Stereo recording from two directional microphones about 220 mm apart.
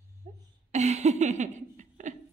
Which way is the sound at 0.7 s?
30° right (ahead or behind).